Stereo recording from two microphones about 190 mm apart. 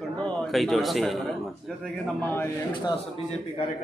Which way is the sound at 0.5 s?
Centre (ahead or behind).